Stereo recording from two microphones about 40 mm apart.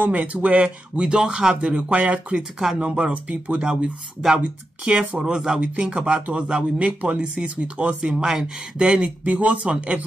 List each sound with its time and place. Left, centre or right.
0.0 s speech: right
1.6 s speech: right
5.2 s speech: centre
5.6 s speech: right
7.0 s speech: right
8.0 s speech: centre
9.2 s speech: right